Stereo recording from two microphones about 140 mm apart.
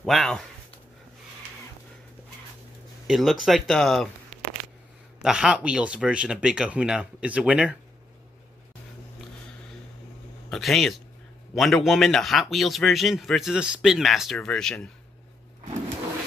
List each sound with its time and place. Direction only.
0.0 s a man's voice: centre (ahead or behind)
3.1 s a man's voice: centre (ahead or behind)
5.2 s speech: 5° right (ahead or behind)
10.5 s a man's voice: centre (ahead or behind)